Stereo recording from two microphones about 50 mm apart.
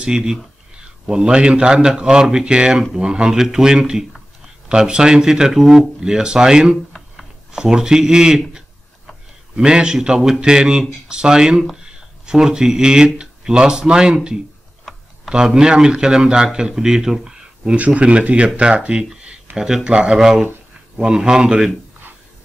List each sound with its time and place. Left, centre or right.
0.0 s speech: centre
9.6 s speech: centre
17.6 s speech: right
20.2 s speech: centre